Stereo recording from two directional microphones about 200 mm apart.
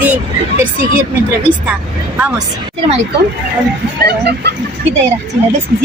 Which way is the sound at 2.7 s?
25° right (ahead or behind).